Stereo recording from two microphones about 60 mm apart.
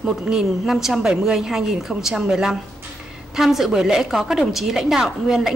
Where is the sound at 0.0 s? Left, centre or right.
Centre.